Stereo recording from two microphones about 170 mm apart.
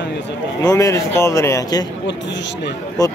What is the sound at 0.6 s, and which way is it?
A man's voice, 20° left (ahead or behind).